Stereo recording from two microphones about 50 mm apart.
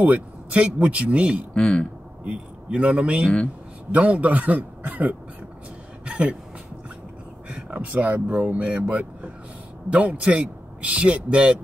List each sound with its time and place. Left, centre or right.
0.0 s speech: right
1.5 s speech: centre
2.2 s a man's voice: right
6.0 s a sound: right
7.4 s speech: right